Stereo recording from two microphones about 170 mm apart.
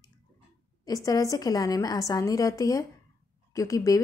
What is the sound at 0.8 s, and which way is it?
A woman's voice, 20° left (ahead or behind).